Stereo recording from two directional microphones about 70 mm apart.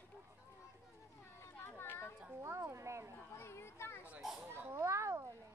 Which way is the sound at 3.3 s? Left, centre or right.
Left.